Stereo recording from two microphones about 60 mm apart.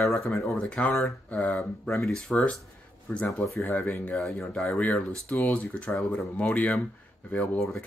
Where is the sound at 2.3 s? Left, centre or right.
Centre.